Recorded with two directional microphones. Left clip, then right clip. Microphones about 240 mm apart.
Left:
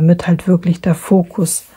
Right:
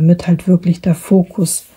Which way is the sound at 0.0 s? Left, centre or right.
Centre.